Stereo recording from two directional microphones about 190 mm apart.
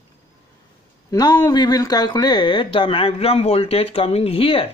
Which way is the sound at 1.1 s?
20° left (ahead or behind).